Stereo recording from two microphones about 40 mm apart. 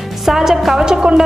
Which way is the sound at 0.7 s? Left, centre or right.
Centre.